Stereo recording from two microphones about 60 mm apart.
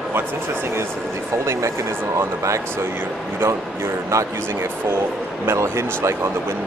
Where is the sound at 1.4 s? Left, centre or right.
Right.